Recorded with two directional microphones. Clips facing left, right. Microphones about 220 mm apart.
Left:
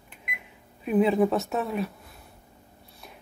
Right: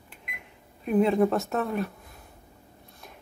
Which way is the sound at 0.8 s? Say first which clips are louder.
Even; centre (ahead or behind).